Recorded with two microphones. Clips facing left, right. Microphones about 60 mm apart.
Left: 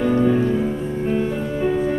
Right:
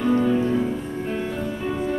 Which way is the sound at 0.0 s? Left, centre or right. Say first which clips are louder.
Left 3 dB; centre.